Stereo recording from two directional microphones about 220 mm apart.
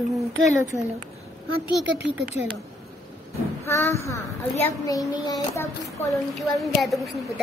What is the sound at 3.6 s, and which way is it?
A child's voice, 10° left (ahead or behind).